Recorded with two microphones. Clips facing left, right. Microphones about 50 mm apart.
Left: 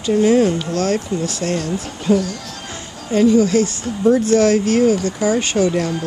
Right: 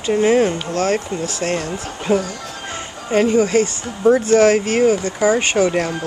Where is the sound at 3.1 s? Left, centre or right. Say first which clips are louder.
Left 1 dB; right.